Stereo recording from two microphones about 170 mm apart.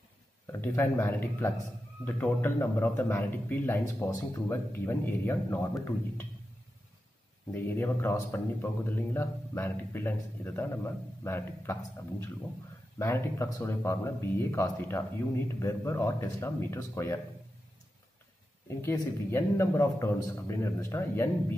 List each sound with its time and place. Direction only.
0.5 s speech: 15° left (ahead or behind)
7.5 s speech: 10° left (ahead or behind)
13.0 s speech: 15° left (ahead or behind)
18.7 s speech: 15° left (ahead or behind)